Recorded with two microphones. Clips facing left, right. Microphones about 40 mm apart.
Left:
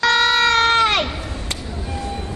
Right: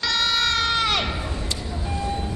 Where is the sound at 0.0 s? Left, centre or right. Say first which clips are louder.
Left 7 dB; left.